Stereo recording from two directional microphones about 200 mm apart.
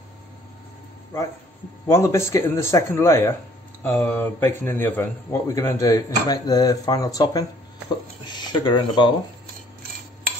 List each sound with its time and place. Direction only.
1.9 s speech: 15° left (ahead or behind)